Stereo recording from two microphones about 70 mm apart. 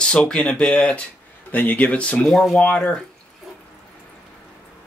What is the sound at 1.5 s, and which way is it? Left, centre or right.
Speech, left.